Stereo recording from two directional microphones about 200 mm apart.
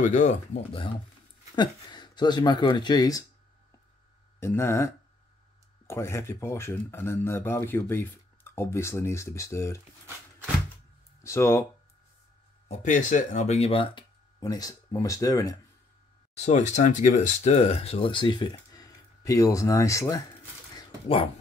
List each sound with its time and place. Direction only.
0.0 s speech: 35° left (ahead or behind)
1.5 s speech: 20° left (ahead or behind)
4.4 s speech: 10° left (ahead or behind)
11.2 s speech: 15° left (ahead or behind)
12.6 s speech: 35° left (ahead or behind); by 15.5 s 15° left (ahead or behind)
16.3 s speech: 35° left (ahead or behind); by 20.2 s 15° left (ahead or behind)